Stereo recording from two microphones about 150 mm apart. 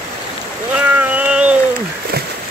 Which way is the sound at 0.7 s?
10° right (ahead or behind).